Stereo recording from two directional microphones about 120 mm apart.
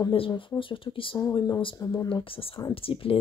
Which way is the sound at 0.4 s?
45° left (ahead or behind).